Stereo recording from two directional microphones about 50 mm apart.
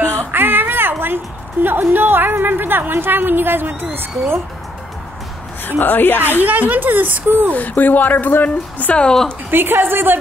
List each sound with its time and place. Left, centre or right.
0.3 s a woman's voice: right
5.7 s a woman's voice: left
6.4 s speech: right
7.5 s a woman's voice: left
8.9 s a woman's voice: centre
9.5 s a woman's voice: right